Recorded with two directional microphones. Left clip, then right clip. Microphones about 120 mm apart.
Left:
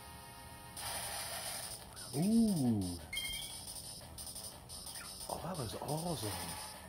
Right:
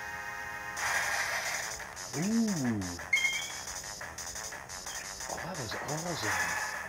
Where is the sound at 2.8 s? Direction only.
20° left (ahead or behind).